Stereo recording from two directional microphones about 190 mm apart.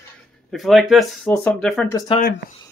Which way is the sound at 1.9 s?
25° left (ahead or behind).